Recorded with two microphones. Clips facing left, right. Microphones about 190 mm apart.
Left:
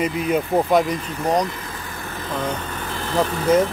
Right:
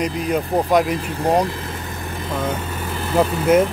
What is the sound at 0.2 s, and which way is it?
Speech, 5° left (ahead or behind).